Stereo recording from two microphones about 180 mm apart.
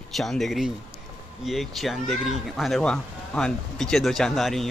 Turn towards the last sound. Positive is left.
turn(degrees=0)  # may be behind; listen again after turning